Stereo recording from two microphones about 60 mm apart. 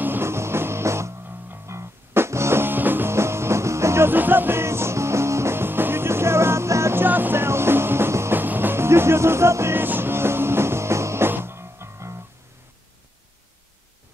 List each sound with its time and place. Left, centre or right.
0.0 s music: right
4.1 s music: right
7.1 s music: right
8.4 s music: right
11.2 s music: right